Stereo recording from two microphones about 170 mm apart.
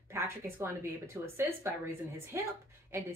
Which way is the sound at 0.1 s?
15° right (ahead or behind).